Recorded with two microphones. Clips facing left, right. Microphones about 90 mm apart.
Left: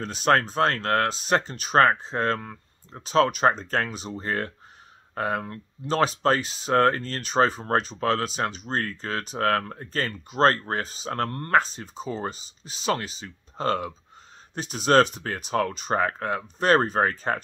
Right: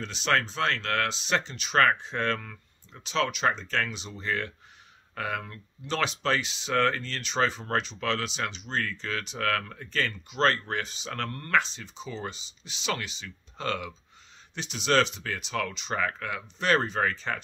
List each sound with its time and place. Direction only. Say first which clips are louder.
0.0 s speech: left 5 dB; 45° left (ahead or behind)